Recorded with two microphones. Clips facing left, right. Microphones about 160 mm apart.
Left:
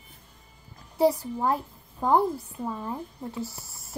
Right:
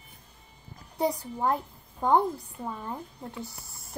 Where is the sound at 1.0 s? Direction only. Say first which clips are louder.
Left 5 dB; 5° left (ahead or behind).